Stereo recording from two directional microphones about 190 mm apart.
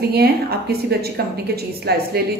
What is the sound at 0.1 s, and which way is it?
A woman's voice, 55° right (ahead or behind).